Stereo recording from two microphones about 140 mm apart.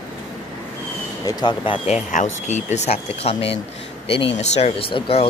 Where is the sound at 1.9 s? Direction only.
55° left (ahead or behind).